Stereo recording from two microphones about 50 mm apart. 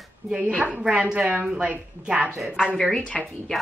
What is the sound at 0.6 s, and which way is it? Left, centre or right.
Speech, right.